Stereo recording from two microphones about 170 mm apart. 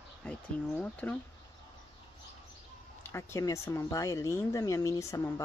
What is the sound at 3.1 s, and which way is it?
Speech, 15° left (ahead or behind).